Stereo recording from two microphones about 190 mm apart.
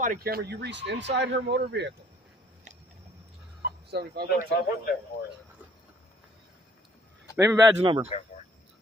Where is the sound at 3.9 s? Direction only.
55° right (ahead or behind).